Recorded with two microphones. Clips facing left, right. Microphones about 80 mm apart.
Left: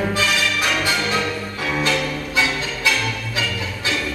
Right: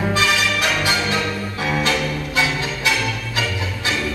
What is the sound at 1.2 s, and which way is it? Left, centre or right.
Music, centre.